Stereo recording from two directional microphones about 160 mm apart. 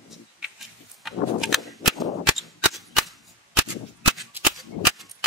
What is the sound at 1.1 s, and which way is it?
Cap gun, centre (ahead or behind).